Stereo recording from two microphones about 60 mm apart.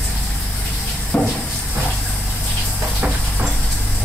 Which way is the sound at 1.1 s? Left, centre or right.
Centre.